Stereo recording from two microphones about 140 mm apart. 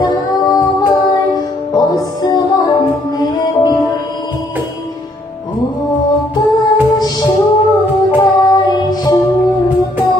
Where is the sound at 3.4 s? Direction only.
30° left (ahead or behind).